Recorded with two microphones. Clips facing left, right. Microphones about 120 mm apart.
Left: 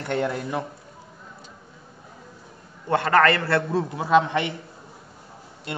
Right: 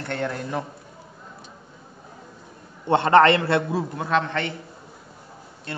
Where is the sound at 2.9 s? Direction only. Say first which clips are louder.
Right 3 dB; 25° right (ahead or behind).